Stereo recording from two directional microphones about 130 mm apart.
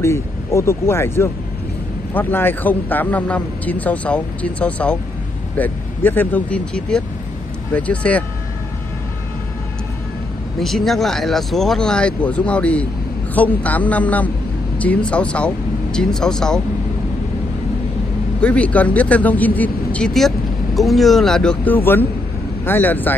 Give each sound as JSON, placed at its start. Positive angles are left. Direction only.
{"t": 0.0, "sound": "speech", "side_deg": 20}
{"t": 10.6, "sound": "speech", "side_deg": 0}
{"t": 18.4, "sound": "speech", "side_deg": 10}